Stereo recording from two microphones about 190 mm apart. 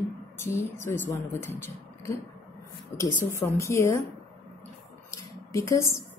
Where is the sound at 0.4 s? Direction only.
15° left (ahead or behind).